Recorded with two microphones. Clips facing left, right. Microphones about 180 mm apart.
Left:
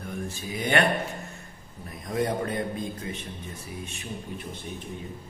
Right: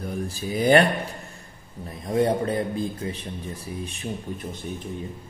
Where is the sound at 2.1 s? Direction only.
30° right (ahead or behind).